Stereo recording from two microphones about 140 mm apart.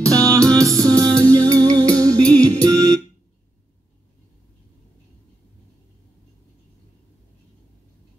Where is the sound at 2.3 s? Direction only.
25° right (ahead or behind).